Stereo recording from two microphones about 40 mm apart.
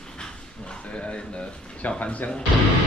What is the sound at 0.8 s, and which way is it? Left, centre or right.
Speech, left.